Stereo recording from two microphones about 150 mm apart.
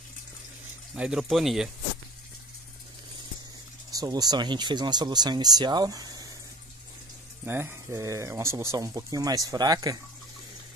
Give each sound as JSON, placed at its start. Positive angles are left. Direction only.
{"t": 0.9, "sound": "speech", "side_deg": -5}
{"t": 3.9, "sound": "speech", "side_deg": -25}
{"t": 7.4, "sound": "speech", "side_deg": -15}